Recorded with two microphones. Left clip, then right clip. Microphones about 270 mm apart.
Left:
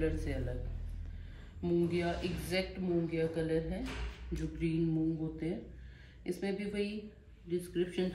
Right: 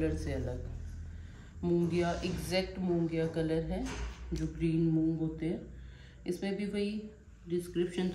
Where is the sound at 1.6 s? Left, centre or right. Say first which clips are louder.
Right 2 dB; centre.